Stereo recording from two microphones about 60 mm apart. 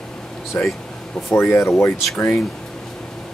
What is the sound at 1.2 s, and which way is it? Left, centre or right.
Speech, left.